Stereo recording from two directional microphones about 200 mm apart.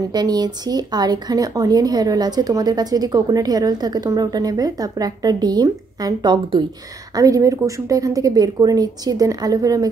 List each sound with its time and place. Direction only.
0.1 s speech: 20° right (ahead or behind)